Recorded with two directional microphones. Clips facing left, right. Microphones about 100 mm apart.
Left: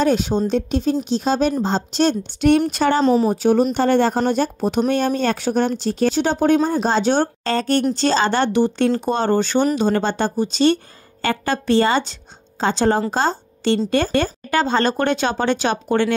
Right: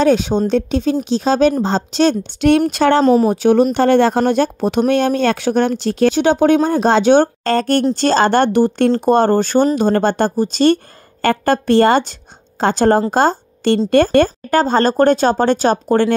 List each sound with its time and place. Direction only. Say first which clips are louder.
0.0 s a woman's voice: right 4 dB; 90° right
3.0 s speech: right 4 dB; 45° right (ahead or behind)
3.3 s speech: right 4 dB; 70° right (ahead or behind)
3.7 s a woman's voice: right 4 dB; 90° right
4.3 s speech: right 4 dB; 75° right (ahead or behind); by 16.2 s 40° right (ahead or behind)